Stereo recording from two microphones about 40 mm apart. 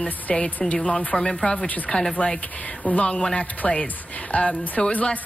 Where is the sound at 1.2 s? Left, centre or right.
Left.